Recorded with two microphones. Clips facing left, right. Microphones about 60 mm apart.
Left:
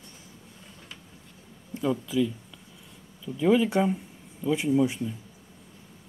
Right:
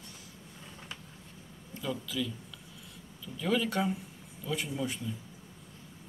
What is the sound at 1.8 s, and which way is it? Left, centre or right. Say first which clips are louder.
Speech: left 9 dB; left.